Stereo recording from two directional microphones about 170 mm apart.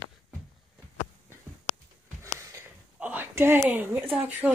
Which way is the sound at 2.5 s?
10° right (ahead or behind).